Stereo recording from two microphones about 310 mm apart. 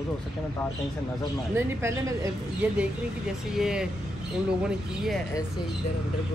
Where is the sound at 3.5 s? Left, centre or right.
Centre.